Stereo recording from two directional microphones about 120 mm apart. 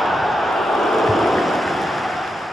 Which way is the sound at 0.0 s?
Centre (ahead or behind).